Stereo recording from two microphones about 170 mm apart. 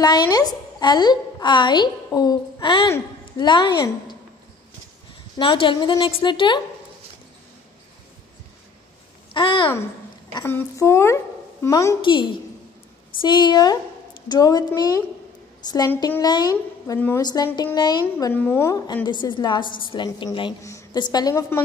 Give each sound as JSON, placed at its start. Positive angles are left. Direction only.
{"t": 0.0, "sound": "a woman's voice", "side_deg": 25}
{"t": 5.4, "sound": "a woman's voice", "side_deg": 30}
{"t": 9.3, "sound": "a child's voice", "side_deg": 30}
{"t": 10.3, "sound": "speech", "side_deg": 15}
{"t": 12.0, "sound": "a woman's voice", "side_deg": 30}
{"t": 18.2, "sound": "speech", "side_deg": 10}
{"t": 19.0, "sound": "a woman's voice", "side_deg": 25}